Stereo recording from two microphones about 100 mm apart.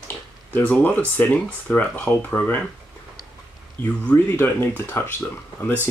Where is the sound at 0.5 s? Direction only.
20° left (ahead or behind).